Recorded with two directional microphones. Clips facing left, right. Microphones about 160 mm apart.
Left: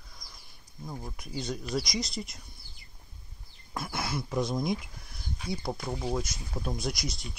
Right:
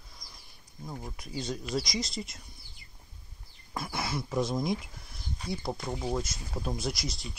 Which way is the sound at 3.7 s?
Centre (ahead or behind).